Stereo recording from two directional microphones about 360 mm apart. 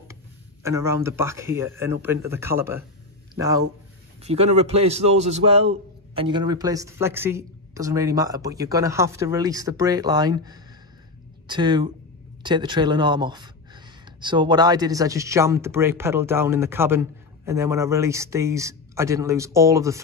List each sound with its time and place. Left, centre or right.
0.7 s a man's voice: centre